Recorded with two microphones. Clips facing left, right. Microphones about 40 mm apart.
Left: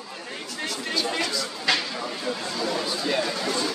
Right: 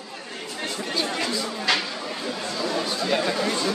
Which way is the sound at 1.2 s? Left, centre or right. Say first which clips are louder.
Right 2 dB; centre.